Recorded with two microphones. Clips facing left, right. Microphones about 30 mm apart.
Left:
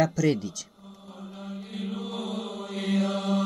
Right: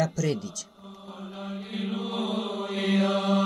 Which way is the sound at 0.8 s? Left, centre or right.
Right.